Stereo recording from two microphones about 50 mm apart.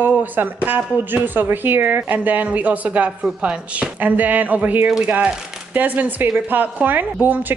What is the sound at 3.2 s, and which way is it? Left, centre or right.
Speech, centre.